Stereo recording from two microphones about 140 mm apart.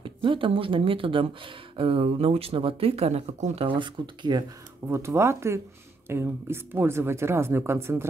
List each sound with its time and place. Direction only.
0.0 s speech: 40° right (ahead or behind); by 3.6 s 55° right (ahead or behind)
3.6 s speech: 35° right (ahead or behind)
4.8 s speech: 20° right (ahead or behind)